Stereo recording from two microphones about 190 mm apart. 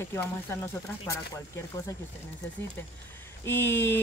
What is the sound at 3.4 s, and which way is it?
Speech, 10° left (ahead or behind).